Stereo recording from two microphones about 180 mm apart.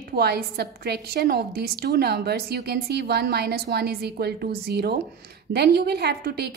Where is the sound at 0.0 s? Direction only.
60° right (ahead or behind).